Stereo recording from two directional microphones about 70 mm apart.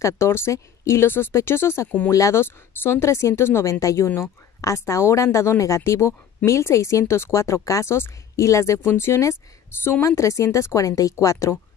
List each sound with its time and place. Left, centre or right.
0.0 s a woman's voice: left
1.0 s a woman's voice: left
2.0 s a woman's voice: left
2.4 s a woman's voice: left
10.0 s a woman's voice: left